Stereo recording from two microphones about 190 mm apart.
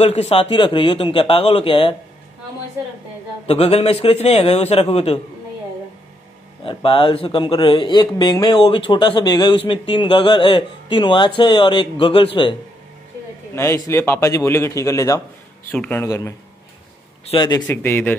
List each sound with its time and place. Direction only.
0.0 s speech: 35° left (ahead or behind)
3.4 s speech: 35° left (ahead or behind)
6.6 s speech: 30° left (ahead or behind)
13.6 s a man's voice: 15° left (ahead or behind)
17.6 s a man's voice: 10° left (ahead or behind)